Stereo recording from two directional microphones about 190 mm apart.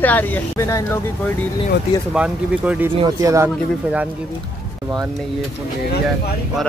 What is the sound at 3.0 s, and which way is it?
Speech, 15° right (ahead or behind).